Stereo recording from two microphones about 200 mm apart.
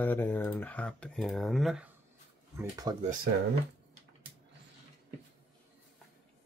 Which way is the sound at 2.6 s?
15° right (ahead or behind).